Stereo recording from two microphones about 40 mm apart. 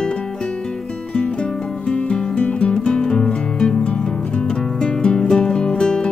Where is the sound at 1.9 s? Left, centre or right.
Left.